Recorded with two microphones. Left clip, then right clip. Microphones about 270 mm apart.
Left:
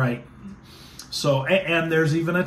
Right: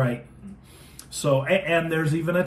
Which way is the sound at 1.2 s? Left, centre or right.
Centre.